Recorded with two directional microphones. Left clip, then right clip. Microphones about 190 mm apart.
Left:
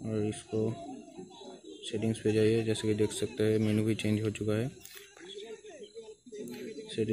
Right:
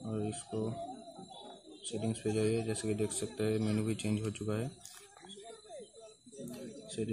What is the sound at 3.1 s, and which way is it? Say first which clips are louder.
Speech: left 5 dB; 35° right (ahead or behind).